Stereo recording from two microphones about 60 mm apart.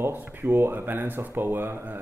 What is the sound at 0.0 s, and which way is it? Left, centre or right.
Speech, right.